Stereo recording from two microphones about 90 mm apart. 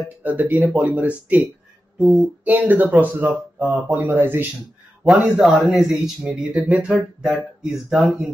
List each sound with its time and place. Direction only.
0.2 s speech: 20° right (ahead or behind)
5.0 s speech: 5° right (ahead or behind)
6.7 s speech: 15° right (ahead or behind)